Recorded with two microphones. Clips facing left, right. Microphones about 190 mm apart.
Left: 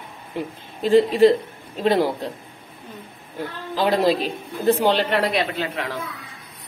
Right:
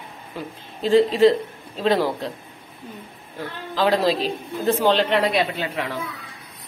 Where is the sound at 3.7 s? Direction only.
15° left (ahead or behind).